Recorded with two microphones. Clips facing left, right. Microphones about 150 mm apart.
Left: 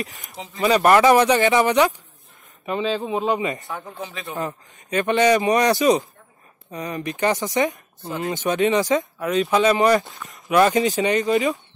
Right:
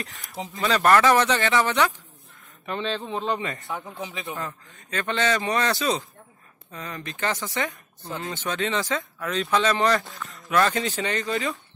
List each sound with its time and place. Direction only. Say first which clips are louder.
0.6 s speech: left 4 dB; 15° left (ahead or behind)
3.9 s speech: left 1 dB; 20° right (ahead or behind)
4.3 s speech: left 5 dB; 20° left (ahead or behind)